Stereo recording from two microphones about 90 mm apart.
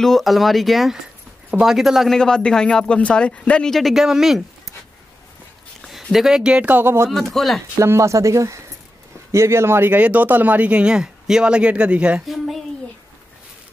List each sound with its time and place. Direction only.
0.0 s speech: centre (ahead or behind)
2.1 s speech: 10° left (ahead or behind)
5.8 s a sound: centre (ahead or behind)
6.1 s speech: 5° right (ahead or behind); by 7.1 s 25° right (ahead or behind)
7.1 s speech: centre (ahead or behind)
7.8 s speech: 30° right (ahead or behind); by 12.2 s 10° right (ahead or behind)
12.3 s a sound: centre (ahead or behind)